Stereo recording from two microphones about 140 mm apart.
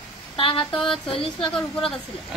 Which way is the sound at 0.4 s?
40° left (ahead or behind).